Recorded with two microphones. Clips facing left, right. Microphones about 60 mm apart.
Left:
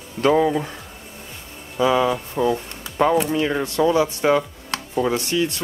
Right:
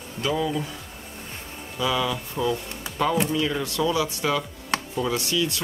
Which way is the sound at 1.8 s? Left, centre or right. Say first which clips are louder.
Left 7 dB; left.